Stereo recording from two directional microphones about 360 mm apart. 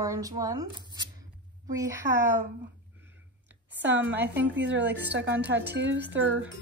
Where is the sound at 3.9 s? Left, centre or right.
Right.